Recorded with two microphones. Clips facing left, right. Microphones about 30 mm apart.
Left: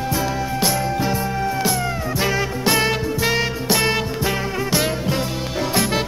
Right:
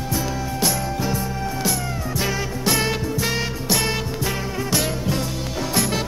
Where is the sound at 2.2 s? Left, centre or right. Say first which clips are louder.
Left 4 dB; centre.